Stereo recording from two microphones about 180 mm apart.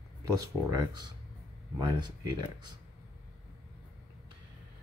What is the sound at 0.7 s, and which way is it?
Speech, 25° right (ahead or behind).